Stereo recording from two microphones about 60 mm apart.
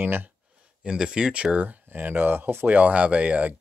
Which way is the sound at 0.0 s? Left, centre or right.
Right.